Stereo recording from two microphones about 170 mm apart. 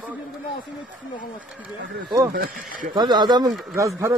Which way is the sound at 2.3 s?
60° right (ahead or behind).